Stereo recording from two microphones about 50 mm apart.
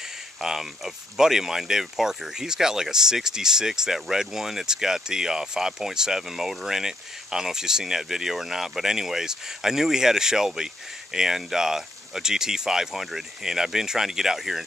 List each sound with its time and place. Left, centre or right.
0.4 s speech: centre